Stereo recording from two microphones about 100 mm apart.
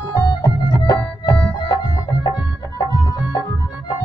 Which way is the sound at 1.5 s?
50° left (ahead or behind).